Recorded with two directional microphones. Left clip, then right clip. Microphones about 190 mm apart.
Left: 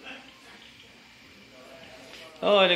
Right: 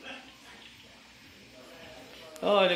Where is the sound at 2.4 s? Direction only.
Centre (ahead or behind).